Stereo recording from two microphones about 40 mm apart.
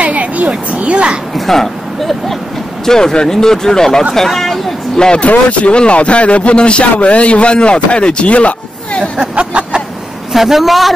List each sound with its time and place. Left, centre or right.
0.0 s a sound: right
1.3 s speech: centre
5.2 s a man's voice: left
9.2 s speech: right
10.3 s a man's voice: centre